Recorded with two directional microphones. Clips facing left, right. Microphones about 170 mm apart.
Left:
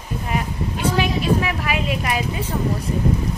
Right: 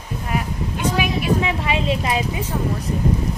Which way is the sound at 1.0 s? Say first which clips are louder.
Even; 15° right (ahead or behind).